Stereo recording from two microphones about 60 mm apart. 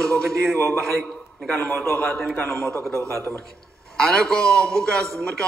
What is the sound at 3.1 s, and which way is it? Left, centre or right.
Speech, left.